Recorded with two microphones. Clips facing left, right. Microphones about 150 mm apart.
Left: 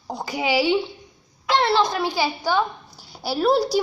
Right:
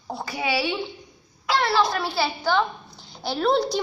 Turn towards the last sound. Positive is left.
turn(degrees=5)  # may be behind; listen again after turning